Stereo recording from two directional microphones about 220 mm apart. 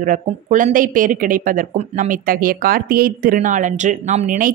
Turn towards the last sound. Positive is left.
turn(degrees=-40)  # may be behind; listen again after turning